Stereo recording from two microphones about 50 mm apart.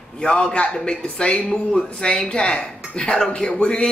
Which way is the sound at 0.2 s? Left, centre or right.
Centre.